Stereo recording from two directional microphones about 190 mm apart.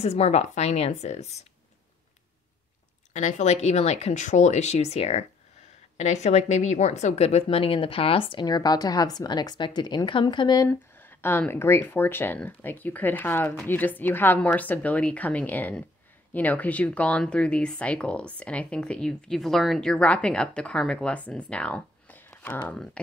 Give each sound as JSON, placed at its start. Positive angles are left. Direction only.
{"t": 0.0, "sound": "a woman's voice", "side_deg": 35}
{"t": 3.1, "sound": "a woman's voice", "side_deg": 40}
{"t": 10.7, "sound": "speech", "side_deg": 10}